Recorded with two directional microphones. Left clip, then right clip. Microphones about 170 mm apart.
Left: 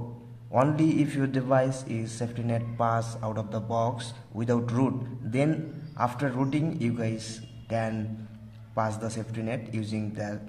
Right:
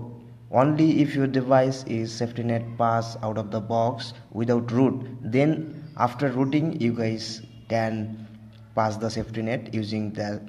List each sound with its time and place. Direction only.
0.5 s a man's voice: 20° right (ahead or behind)